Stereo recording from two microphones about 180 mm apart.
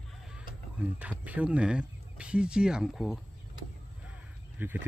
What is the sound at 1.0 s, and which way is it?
Speech, 10° right (ahead or behind).